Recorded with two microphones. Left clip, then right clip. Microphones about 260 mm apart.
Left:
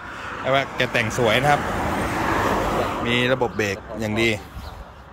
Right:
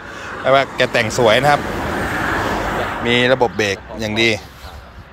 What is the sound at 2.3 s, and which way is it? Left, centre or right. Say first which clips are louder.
Vehicle: right 2 dB; left.